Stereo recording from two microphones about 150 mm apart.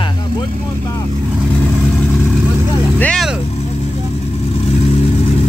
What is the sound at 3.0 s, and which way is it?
Vehicle, 5° left (ahead or behind).